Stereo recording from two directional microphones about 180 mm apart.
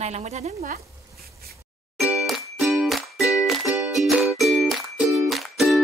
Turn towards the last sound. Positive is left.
turn(degrees=0)  # may be behind; listen again after turning